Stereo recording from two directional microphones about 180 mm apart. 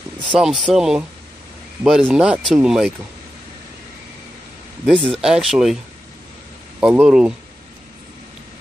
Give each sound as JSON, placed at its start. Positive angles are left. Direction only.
{"t": 0.3, "sound": "speech", "side_deg": 0}
{"t": 4.8, "sound": "speech", "side_deg": 0}
{"t": 6.8, "sound": "speech", "side_deg": -5}